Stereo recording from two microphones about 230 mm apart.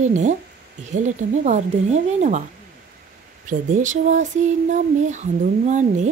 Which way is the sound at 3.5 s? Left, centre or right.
Right.